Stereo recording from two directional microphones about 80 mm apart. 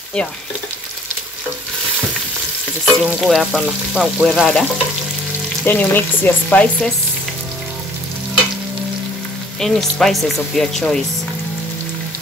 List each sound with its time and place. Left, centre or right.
2.8 s frying: centre
5.7 s frying: left
9.6 s frying: centre